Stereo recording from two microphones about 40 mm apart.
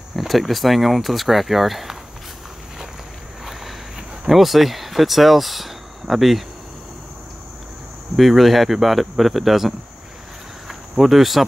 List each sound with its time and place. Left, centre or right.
0.3 s speech: centre
4.3 s speech: centre
8.2 s speech: centre
10.7 s cricket: centre